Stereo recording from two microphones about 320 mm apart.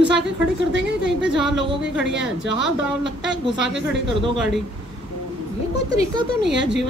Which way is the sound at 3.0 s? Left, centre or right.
Right.